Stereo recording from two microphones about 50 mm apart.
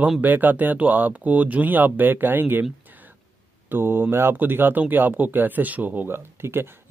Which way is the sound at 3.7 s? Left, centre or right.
Right.